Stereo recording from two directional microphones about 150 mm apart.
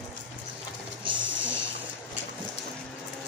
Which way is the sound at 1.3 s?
10° right (ahead or behind).